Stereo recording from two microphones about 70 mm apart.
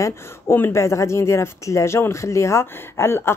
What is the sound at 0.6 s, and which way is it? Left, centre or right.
Speech, left.